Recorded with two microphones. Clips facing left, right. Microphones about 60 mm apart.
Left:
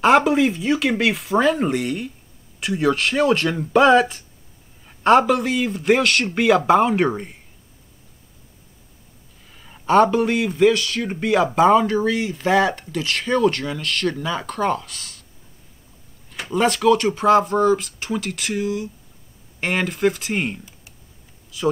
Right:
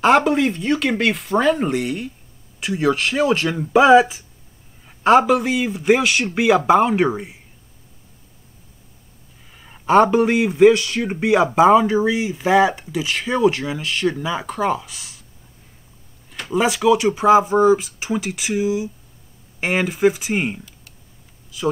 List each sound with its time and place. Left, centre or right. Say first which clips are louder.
0.0 s a man's voice: even; centre
9.5 s a man's voice: right 2 dB; centre
16.3 s a man's voice: even; centre